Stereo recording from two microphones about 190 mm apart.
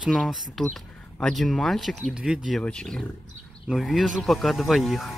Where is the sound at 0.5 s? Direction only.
5° left (ahead or behind).